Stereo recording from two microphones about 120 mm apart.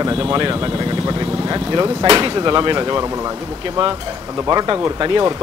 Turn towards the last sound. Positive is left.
turn(degrees=-35)  # may be behind; listen again after turning